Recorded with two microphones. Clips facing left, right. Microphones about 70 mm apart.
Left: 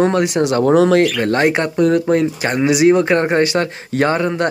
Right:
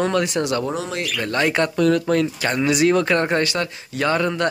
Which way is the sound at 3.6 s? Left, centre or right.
Left.